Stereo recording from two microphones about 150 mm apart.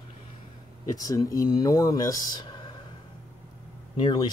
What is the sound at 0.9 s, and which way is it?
Speech, 25° left (ahead or behind).